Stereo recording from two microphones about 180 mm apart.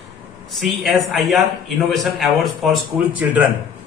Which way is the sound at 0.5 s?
Centre (ahead or behind).